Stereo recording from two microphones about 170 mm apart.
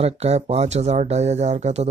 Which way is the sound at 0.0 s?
40° right (ahead or behind).